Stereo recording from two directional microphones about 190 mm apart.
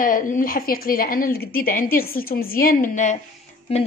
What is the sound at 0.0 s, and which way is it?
A woman's voice, 45° left (ahead or behind).